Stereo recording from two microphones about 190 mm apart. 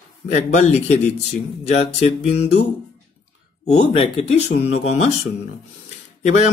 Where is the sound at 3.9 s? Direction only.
30° left (ahead or behind).